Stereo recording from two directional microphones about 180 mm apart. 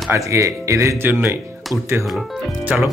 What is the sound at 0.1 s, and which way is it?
Speech, 15° right (ahead or behind).